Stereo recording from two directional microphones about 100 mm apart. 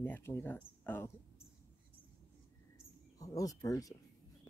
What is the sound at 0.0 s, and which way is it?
Speech, 20° left (ahead or behind).